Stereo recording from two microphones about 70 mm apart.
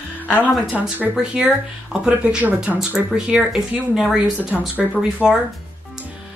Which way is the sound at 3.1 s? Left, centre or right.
Centre.